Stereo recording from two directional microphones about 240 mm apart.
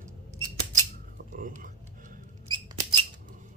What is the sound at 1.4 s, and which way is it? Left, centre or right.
Speech, right.